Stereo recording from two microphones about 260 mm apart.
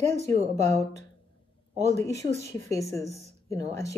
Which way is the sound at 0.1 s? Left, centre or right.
Right.